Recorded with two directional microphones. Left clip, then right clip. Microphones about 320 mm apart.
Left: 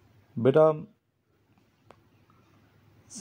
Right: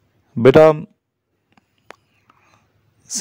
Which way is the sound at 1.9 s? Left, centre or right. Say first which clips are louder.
Right 14 dB; right.